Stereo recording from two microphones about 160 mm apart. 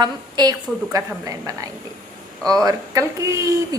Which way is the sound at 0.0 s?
25° right (ahead or behind).